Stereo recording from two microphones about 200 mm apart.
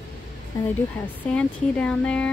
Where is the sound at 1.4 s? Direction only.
5° left (ahead or behind).